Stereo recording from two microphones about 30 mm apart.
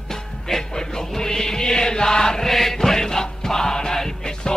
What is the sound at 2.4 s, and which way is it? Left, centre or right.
Music, centre.